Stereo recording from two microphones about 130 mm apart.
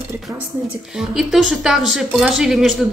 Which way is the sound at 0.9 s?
5° right (ahead or behind).